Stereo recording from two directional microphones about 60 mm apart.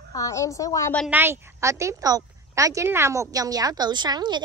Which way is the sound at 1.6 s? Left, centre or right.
Right.